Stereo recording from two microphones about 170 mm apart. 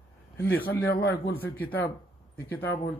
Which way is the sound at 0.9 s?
70° left (ahead or behind).